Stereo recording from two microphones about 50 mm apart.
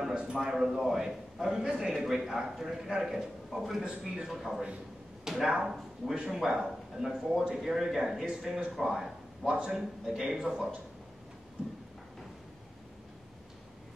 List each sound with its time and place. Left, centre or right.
0.1 s a man's voice: centre
6.1 s a man's voice: centre